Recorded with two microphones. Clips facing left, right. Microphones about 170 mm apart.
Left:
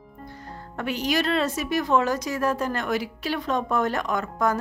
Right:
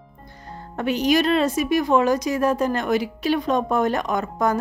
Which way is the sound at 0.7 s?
20° right (ahead or behind).